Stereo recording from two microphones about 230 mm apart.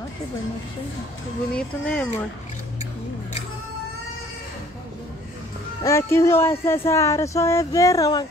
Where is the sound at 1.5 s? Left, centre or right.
Centre.